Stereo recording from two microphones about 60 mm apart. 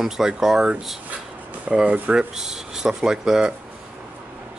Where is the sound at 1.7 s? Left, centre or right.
Centre.